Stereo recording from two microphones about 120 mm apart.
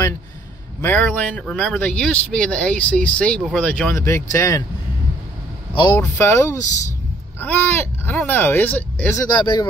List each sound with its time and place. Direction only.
0.8 s speech: 10° left (ahead or behind)
3.9 s speech: 25° left (ahead or behind)
5.9 s speech: 20° left (ahead or behind)
9.1 s speech: 35° left (ahead or behind)